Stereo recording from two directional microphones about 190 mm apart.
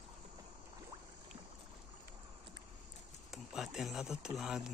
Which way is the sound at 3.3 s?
Centre (ahead or behind).